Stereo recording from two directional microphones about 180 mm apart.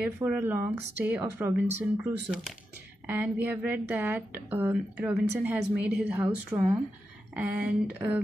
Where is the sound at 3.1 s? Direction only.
10° right (ahead or behind).